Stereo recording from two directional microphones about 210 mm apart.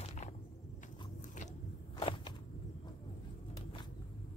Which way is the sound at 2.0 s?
25° left (ahead or behind).